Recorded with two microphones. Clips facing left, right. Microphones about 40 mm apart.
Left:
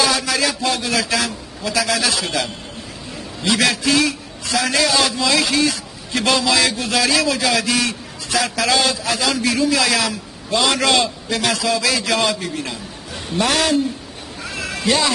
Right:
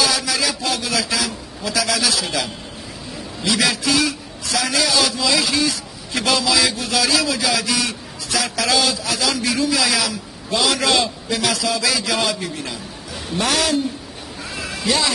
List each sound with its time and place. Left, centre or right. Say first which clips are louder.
0.0 s a man's voice: left 2 dB; centre
3.4 s a man's voice: left 2 dB; centre